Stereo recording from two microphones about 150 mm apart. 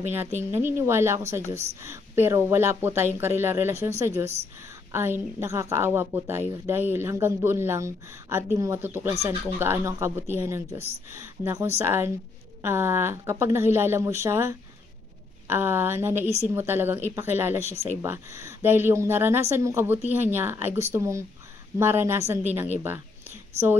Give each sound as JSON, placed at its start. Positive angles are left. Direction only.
{"t": 0.4, "sound": "a woman's voice", "side_deg": -15}